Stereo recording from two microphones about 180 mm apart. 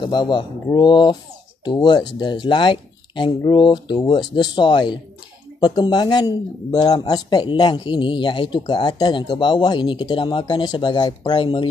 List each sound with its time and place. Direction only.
0.0 s speech: 25° left (ahead or behind)